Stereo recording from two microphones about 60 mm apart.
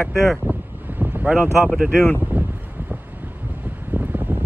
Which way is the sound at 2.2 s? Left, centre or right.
Right.